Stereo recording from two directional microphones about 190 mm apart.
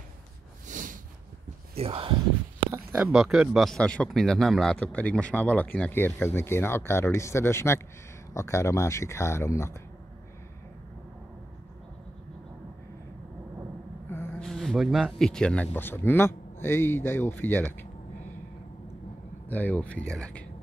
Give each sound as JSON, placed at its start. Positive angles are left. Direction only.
{"t": 0.7, "sound": "a sound", "side_deg": -45}
{"t": 1.8, "sound": "speech", "side_deg": -30}
{"t": 2.7, "sound": "a sound", "side_deg": -15}
{"t": 3.1, "sound": "a man's voice", "side_deg": -5}
{"t": 14.0, "sound": "a man's voice", "side_deg": 10}
{"t": 19.5, "sound": "a man's voice", "side_deg": 10}